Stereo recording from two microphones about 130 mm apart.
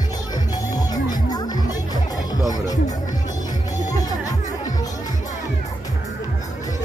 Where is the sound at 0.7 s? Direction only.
30° left (ahead or behind).